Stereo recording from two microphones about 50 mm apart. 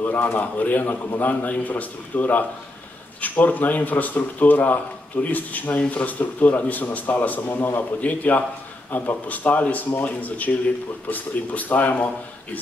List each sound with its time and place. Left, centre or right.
0.0 s a man's voice: left